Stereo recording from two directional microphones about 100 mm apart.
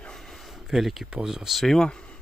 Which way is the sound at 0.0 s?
5° left (ahead or behind).